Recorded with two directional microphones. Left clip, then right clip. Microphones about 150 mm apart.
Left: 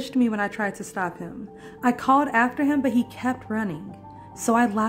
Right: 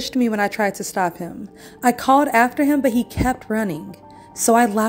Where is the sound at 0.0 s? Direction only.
20° right (ahead or behind).